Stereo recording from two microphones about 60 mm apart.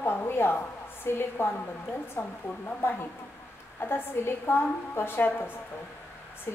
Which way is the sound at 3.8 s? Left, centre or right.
Left.